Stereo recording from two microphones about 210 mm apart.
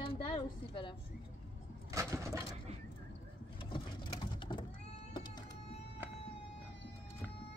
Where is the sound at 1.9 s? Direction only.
15° right (ahead or behind).